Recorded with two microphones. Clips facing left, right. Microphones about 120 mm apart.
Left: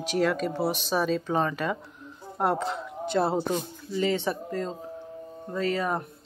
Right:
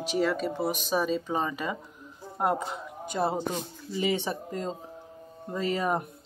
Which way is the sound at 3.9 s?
15° right (ahead or behind).